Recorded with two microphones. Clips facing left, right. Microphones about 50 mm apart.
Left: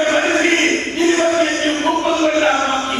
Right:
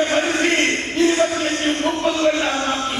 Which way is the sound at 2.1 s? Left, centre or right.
Left.